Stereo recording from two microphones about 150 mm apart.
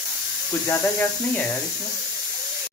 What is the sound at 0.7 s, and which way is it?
Speech, 20° left (ahead or behind).